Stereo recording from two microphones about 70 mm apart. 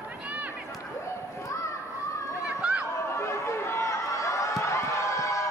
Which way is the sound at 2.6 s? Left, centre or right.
Centre.